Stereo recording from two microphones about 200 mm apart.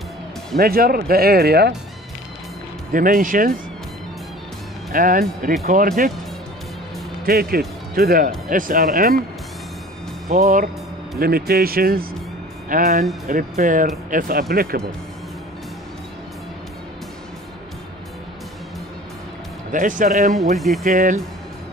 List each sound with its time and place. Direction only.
0.6 s speech: 50° right (ahead or behind)
2.9 s speech: 45° right (ahead or behind)
4.9 s speech: 45° right (ahead or behind)
7.2 s speech: 50° right (ahead or behind)
10.2 s speech: 40° right (ahead or behind)
19.7 s speech: 40° right (ahead or behind)
20.5 s speech: centre (ahead or behind)
20.8 s speech: 40° right (ahead or behind)